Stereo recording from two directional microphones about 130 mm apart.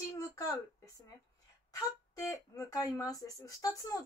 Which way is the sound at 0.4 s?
25° left (ahead or behind).